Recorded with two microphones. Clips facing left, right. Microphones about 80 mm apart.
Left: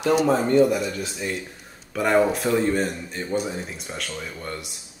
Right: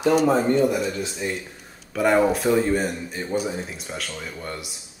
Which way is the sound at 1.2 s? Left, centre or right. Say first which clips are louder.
Right 1 dB; centre.